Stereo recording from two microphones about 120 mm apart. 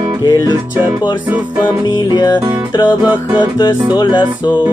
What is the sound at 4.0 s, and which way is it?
Music, 40° left (ahead or behind).